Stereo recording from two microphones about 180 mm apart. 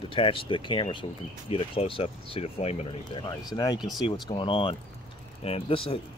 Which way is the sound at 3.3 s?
20° left (ahead or behind).